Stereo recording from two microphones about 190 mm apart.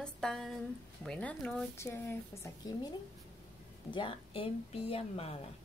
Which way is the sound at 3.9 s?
30° left (ahead or behind).